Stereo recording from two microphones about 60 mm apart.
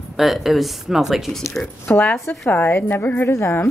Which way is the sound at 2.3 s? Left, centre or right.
Left.